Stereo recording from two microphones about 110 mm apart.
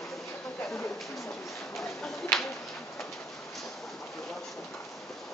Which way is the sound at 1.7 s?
Centre (ahead or behind).